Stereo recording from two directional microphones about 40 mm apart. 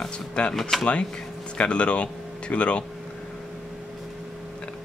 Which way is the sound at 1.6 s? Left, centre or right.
Left.